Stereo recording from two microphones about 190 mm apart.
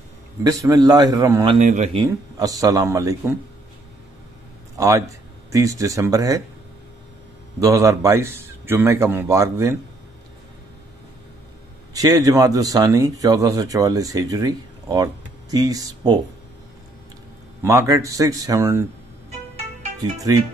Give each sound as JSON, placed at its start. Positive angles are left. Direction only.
{"t": 0.4, "sound": "speech", "side_deg": -20}
{"t": 1.5, "sound": "a man's voice", "side_deg": -40}
{"t": 2.0, "sound": "speech", "side_deg": -20}
{"t": 4.7, "sound": "speech", "side_deg": -15}
{"t": 7.6, "sound": "a man's voice", "side_deg": -15}
{"t": 11.9, "sound": "speech", "side_deg": -20}
{"t": 17.6, "sound": "a man's voice", "side_deg": -15}
{"t": 20.0, "sound": "speech", "side_deg": -20}